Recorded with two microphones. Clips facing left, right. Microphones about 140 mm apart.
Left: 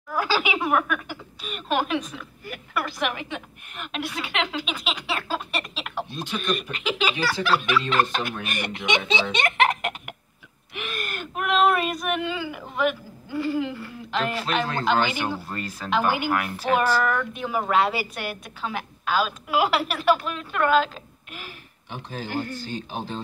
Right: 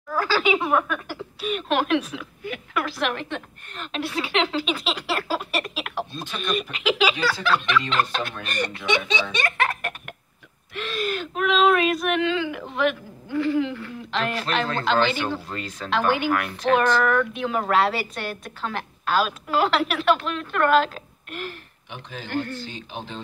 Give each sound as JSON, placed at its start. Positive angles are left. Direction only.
{"t": 0.1, "sound": "speech", "side_deg": 15}
{"t": 0.9, "sound": "speech", "side_deg": 0}
{"t": 7.2, "sound": "speech", "side_deg": 5}
{"t": 8.7, "sound": "speech", "side_deg": 20}
{"t": 10.9, "sound": "speech", "side_deg": 5}
{"t": 21.9, "sound": "speech", "side_deg": 40}
{"t": 22.3, "sound": "speech", "side_deg": 10}
{"t": 22.7, "sound": "speech", "side_deg": 45}